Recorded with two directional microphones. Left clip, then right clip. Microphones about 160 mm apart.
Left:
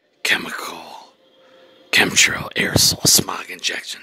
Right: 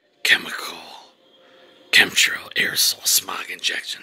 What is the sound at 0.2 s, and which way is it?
Whispering, 60° left (ahead or behind).